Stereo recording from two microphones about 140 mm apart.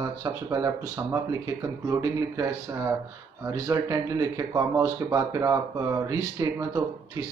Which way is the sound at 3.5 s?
20° right (ahead or behind).